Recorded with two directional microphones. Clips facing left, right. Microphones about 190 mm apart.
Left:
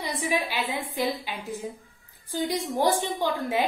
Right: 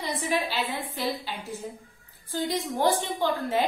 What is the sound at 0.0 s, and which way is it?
A woman's voice, 15° left (ahead or behind).